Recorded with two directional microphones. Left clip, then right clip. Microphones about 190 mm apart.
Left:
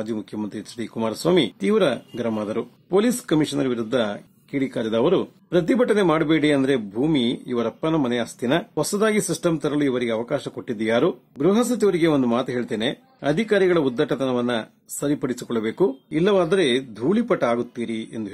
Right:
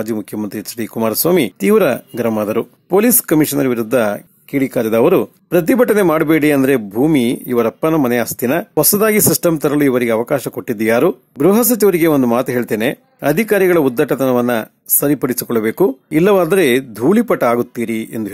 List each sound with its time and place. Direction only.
0.0 s speech: 30° right (ahead or behind)